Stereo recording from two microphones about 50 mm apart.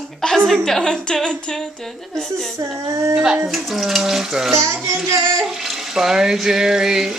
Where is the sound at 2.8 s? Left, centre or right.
Right.